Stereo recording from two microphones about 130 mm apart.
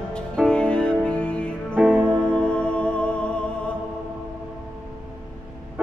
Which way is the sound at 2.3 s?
5° left (ahead or behind).